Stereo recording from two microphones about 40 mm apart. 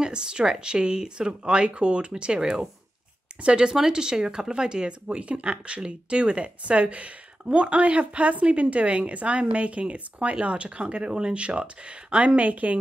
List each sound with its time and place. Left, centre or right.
0.0 s speech: right
12.4 s speech: right